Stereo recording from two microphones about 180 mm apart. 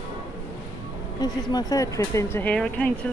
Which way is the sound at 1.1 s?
20° left (ahead or behind).